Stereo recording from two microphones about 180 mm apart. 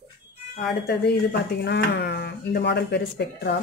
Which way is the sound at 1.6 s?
70° left (ahead or behind).